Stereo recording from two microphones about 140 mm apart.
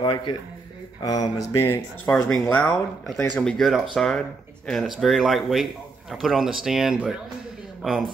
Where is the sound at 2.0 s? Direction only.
10° left (ahead or behind).